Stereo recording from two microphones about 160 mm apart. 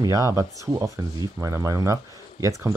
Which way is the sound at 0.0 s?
20° right (ahead or behind).